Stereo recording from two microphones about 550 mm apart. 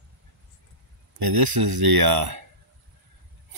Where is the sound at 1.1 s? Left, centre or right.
Right.